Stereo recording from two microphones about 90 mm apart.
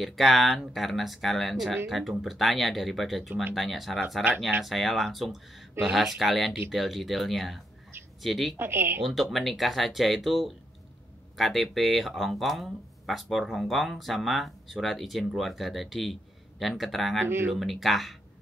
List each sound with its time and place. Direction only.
0.0 s speech: centre (ahead or behind)
8.5 s speech: 25° right (ahead or behind)
9.0 s speech: centre (ahead or behind)